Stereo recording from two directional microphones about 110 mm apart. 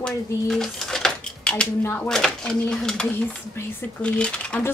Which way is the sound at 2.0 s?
5° left (ahead or behind).